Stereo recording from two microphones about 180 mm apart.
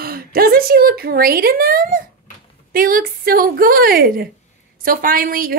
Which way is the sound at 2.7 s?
50° right (ahead or behind).